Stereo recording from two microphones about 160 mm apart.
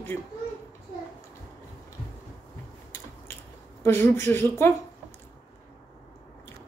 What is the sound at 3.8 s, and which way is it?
Speech, 15° left (ahead or behind).